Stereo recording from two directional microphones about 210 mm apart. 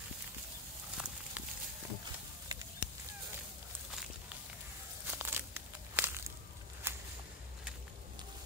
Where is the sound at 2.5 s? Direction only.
20° right (ahead or behind).